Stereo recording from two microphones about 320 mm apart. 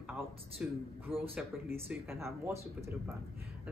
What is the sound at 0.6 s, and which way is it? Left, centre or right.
A woman's voice, centre.